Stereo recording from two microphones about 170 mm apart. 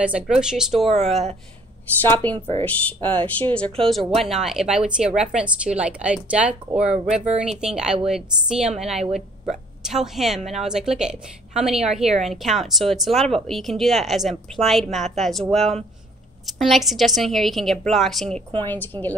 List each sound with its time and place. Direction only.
0.0 s speech: 5° right (ahead or behind)
2.0 s a woman's voice: 10° left (ahead or behind)
2.3 s speech: 30° right (ahead or behind)
2.6 s a woman's voice: 10° left (ahead or behind)